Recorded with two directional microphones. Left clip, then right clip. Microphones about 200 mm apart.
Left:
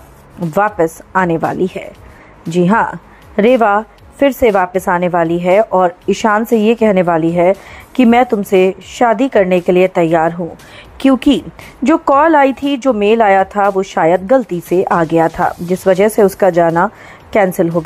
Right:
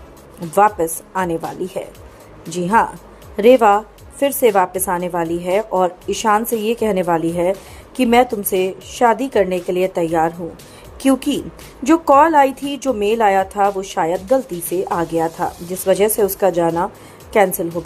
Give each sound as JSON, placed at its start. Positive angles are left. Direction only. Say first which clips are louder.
{"t": 0.5, "sound": "a woman's voice", "louder": "left 1 dB", "side_deg": 35}